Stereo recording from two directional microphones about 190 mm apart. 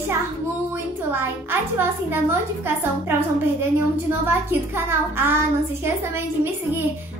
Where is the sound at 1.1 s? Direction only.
10° right (ahead or behind).